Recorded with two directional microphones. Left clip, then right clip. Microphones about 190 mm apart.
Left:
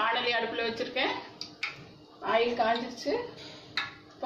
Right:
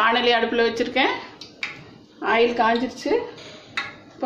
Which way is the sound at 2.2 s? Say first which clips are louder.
Right 8 dB; 55° right (ahead or behind).